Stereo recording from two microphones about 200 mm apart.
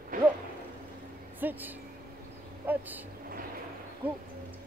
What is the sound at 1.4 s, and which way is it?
Speech, 10° right (ahead or behind).